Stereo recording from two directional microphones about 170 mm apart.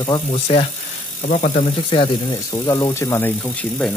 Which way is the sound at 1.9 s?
30° left (ahead or behind).